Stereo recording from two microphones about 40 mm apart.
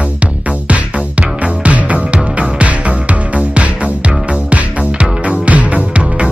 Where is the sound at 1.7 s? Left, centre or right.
Right.